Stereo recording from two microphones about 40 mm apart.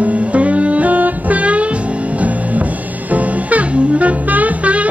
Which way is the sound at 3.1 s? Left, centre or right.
Right.